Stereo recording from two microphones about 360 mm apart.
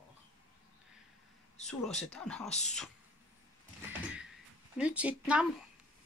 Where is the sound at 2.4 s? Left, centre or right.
Centre.